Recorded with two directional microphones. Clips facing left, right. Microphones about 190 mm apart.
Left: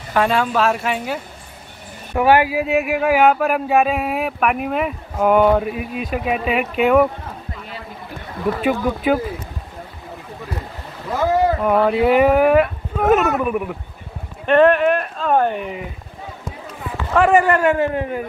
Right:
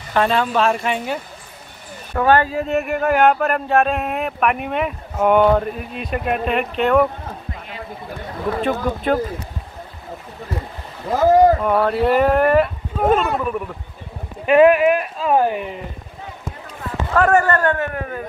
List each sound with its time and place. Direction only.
0.1 s speech: 5° left (ahead or behind)
8.6 s speech: 5° left (ahead or behind)
11.1 s boat: 45° right (ahead or behind)
11.6 s a man's voice: 5° left (ahead or behind)
14.4 s speech: 5° right (ahead or behind)
17.1 s a man's voice: 10° left (ahead or behind)
17.7 s speech: 25° left (ahead or behind)